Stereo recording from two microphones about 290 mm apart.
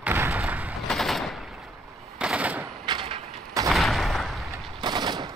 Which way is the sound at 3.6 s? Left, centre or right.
Centre.